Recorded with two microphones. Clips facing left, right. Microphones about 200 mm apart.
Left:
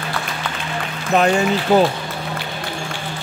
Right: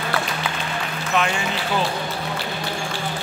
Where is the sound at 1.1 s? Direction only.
40° left (ahead or behind).